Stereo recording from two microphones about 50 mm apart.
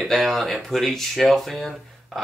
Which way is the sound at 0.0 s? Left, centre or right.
Centre.